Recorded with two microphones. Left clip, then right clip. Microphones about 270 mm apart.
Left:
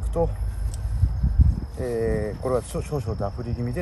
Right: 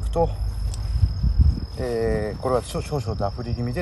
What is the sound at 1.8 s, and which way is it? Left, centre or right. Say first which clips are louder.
Speech: right 1 dB; centre.